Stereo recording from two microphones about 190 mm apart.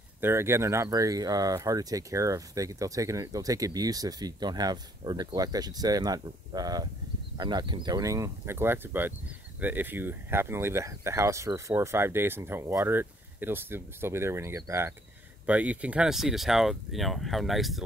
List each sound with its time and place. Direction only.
0.2 s speech: 15° right (ahead or behind)